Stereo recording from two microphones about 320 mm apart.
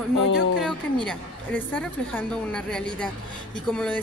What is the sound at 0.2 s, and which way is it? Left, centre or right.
Speech, left.